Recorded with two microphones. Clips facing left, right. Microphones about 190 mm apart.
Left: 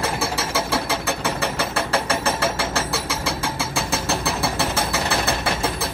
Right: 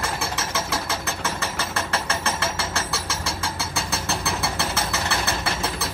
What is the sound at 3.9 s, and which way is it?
Vehicle, 55° left (ahead or behind).